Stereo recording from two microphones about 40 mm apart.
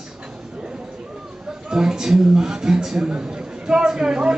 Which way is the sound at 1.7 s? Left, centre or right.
Centre.